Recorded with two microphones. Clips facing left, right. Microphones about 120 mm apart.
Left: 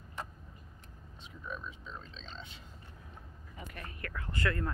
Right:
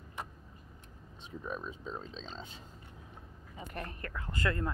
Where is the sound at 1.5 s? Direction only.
40° right (ahead or behind).